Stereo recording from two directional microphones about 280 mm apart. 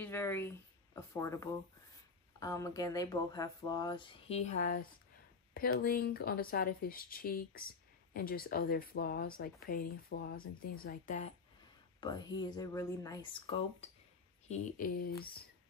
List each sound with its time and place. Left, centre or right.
0.0 s speech: centre; by 11.3 s left
12.0 s speech: centre
14.5 s speech: left